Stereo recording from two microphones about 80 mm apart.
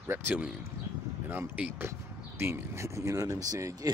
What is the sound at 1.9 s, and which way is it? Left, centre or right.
Speech, right.